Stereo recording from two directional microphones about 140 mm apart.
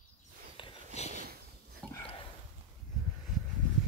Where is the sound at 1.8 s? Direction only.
5° left (ahead or behind).